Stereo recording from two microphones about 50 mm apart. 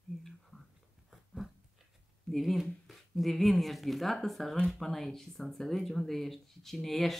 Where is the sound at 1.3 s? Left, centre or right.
Centre.